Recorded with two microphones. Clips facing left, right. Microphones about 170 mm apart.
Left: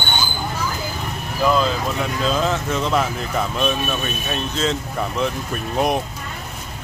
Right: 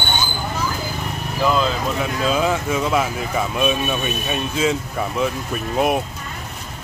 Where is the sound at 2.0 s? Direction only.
10° right (ahead or behind).